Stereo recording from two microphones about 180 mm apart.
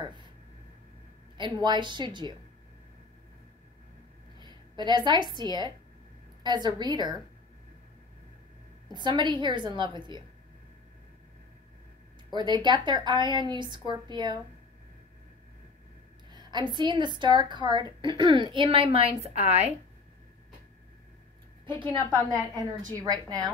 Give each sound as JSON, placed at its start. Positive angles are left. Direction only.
{"t": 0.0, "sound": "a sound", "side_deg": -25}
{"t": 1.4, "sound": "a woman's voice", "side_deg": -25}
{"t": 4.4, "sound": "a woman's voice", "side_deg": -25}
{"t": 8.8, "sound": "a woman's voice", "side_deg": -25}
{"t": 12.3, "sound": "a woman's voice", "side_deg": -25}
{"t": 16.3, "sound": "a woman's voice", "side_deg": -25}
{"t": 22.3, "sound": "a woman's voice", "side_deg": -20}